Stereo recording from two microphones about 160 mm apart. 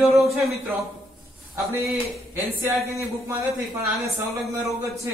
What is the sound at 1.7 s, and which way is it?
A man's voice, 20° right (ahead or behind).